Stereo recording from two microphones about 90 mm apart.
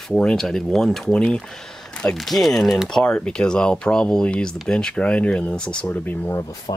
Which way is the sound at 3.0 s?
15° left (ahead or behind).